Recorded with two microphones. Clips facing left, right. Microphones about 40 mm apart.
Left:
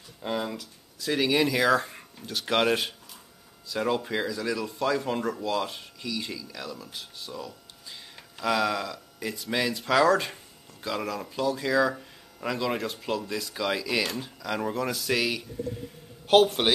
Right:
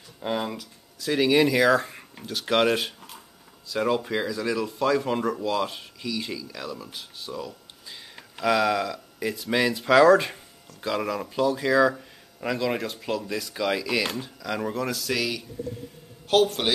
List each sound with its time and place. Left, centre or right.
0.2 s speech: centre